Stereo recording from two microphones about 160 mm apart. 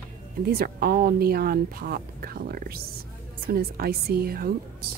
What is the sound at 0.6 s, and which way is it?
A woman's voice, 70° right (ahead or behind).